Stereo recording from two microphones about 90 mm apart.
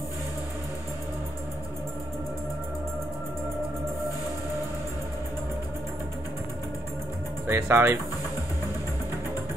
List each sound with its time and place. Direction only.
7.4 s speech: 20° right (ahead or behind)